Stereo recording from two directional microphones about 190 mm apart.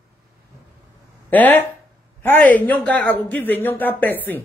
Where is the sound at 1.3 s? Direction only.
10° left (ahead or behind).